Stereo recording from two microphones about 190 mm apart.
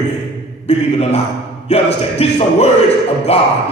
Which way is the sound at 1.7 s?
30° left (ahead or behind).